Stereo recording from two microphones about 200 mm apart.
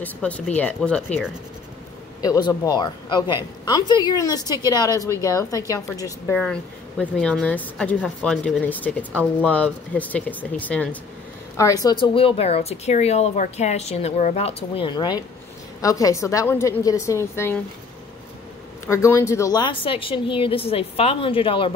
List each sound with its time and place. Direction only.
0.0 s speech: 5° left (ahead or behind)
2.2 s a woman's voice: 20° left (ahead or behind)
6.3 s a woman's voice: 5° left (ahead or behind)
18.9 s a woman's voice: 15° left (ahead or behind)